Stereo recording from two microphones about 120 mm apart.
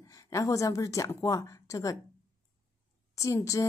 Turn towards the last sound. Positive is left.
turn(degrees=25)  # may be behind; listen again after turning